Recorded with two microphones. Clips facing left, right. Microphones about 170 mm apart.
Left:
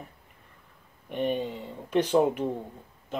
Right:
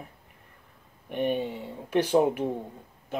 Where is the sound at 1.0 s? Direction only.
5° right (ahead or behind).